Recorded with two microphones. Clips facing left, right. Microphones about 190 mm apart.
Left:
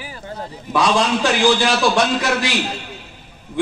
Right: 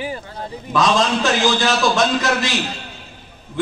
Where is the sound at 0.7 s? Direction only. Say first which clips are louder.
Even; 10° left (ahead or behind).